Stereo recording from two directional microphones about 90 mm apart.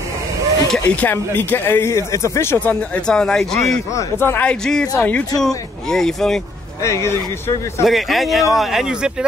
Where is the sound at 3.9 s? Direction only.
30° left (ahead or behind).